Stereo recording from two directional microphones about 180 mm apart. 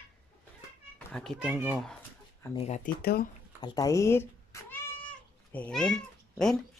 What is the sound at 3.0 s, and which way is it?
Speech, 60° left (ahead or behind).